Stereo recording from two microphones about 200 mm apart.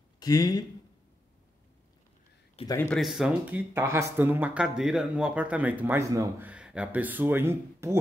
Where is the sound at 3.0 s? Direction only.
Centre (ahead or behind).